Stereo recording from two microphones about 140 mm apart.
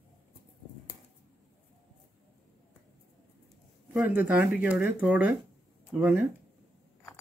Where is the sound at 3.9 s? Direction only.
15° right (ahead or behind).